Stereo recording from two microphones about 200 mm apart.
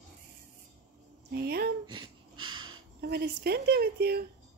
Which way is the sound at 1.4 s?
50° right (ahead or behind).